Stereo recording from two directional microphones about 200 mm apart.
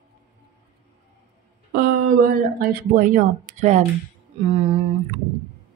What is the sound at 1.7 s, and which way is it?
Speech, 45° right (ahead or behind).